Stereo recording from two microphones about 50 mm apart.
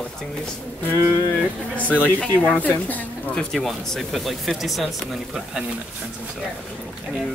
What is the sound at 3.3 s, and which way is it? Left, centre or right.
Speech, centre.